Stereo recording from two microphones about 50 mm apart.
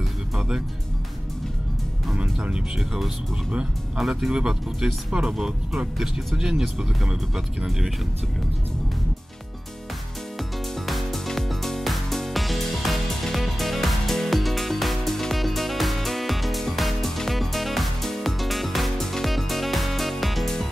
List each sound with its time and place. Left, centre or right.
2.4 s speech: centre
4.3 s speech: centre
10.9 s music: centre